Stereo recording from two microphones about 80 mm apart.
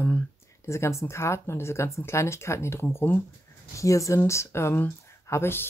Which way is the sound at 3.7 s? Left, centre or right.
Left.